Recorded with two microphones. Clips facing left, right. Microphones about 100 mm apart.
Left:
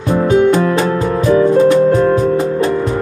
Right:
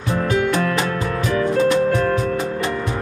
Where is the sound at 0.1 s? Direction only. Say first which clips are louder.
Left 8 dB; 25° left (ahead or behind).